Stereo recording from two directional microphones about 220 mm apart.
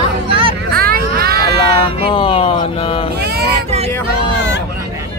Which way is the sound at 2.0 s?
25° left (ahead or behind).